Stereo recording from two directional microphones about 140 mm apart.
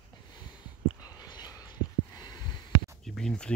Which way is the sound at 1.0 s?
30° left (ahead or behind).